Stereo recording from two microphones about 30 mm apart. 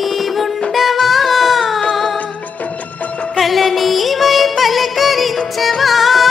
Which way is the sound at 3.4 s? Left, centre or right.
Centre.